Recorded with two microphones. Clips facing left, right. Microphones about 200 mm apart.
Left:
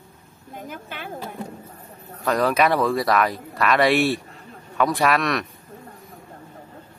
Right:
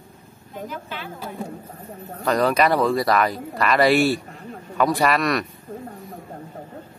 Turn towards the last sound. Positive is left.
turn(degrees=0)  # may be behind; listen again after turning